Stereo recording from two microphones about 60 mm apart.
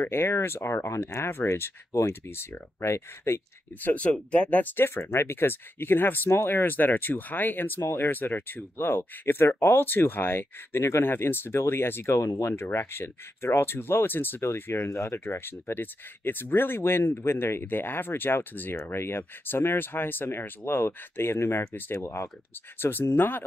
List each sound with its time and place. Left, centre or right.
0.0 s speech: left
3.8 s speech: left
4.7 s speech: left
7.8 s speech: left
8.1 s speech: left
12.2 s speech: left
12.5 s speech: left
14.4 s speech: left
22.0 s speech: left
22.8 s speech: left